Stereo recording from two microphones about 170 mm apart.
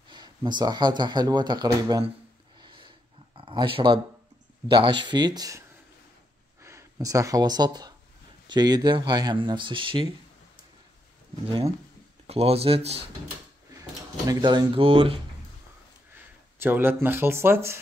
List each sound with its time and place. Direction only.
0.1 s speech: 25° right (ahead or behind)
2.6 s a sound: 25° right (ahead or behind)
3.3 s speech: 30° right (ahead or behind)
6.6 s speech: 20° right (ahead or behind)
12.3 s speech: 35° right (ahead or behind)
13.7 s speech: 20° right (ahead or behind)
16.5 s speech: 15° right (ahead or behind)